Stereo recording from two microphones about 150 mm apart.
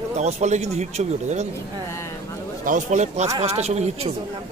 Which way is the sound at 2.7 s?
55° right (ahead or behind).